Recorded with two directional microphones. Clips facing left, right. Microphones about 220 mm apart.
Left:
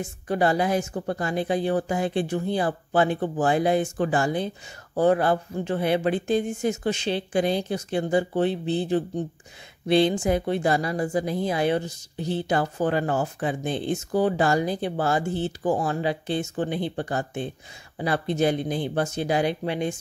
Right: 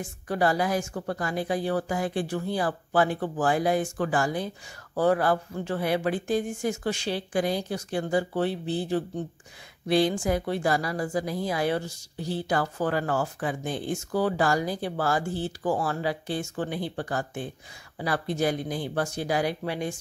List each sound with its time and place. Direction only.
0.0 s a woman's voice: 25° left (ahead or behind)